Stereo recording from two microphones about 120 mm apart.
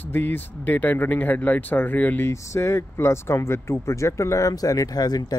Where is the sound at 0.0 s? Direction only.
15° left (ahead or behind).